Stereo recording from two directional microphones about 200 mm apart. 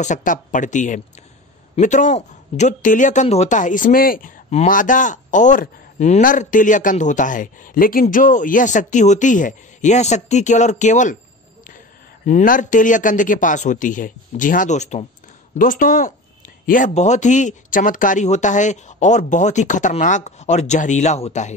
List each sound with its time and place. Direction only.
0.0 s a man's voice: 40° left (ahead or behind)
12.3 s a man's voice: 40° left (ahead or behind)